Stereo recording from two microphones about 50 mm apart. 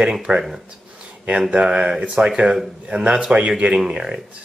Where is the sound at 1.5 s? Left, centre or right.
Right.